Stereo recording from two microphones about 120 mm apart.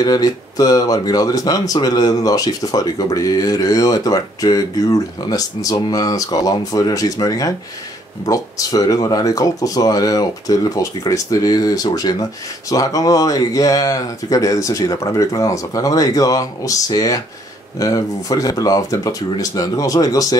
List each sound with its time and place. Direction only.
0.0 s speech: 35° left (ahead or behind)